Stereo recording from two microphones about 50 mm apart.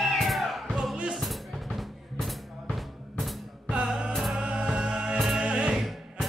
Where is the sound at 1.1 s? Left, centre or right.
Centre.